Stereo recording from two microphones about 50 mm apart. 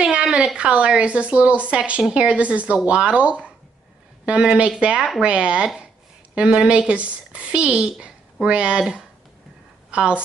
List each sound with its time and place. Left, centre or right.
0.0 s a sound: right
0.6 s speech: right
4.6 s speech: right
9.8 s a woman's voice: right